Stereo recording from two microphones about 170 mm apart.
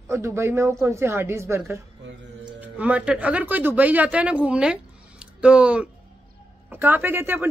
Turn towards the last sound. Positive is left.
turn(degrees=-10)  # may be behind; listen again after turning